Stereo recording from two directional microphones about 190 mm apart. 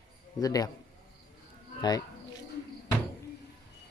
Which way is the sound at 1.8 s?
20° left (ahead or behind).